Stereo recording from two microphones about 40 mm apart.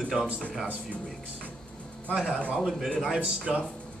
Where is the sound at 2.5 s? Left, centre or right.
Centre.